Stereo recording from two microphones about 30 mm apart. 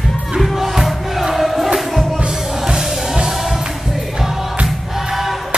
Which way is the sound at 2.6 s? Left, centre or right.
Right.